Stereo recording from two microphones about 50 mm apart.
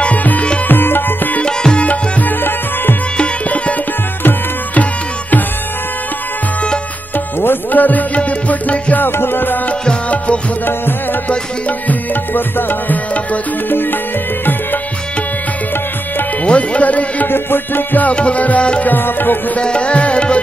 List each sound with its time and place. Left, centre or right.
0.0 s music: left
0.7 s music: left
1.4 s music: centre
1.9 s music: left
4.2 s music: left
7.3 s music: left
10.0 s music: left
11.9 s music: left
13.7 s music: left
16.4 s music: left
17.3 s music: left
18.0 s music: left
18.9 s music: left
19.5 s music: left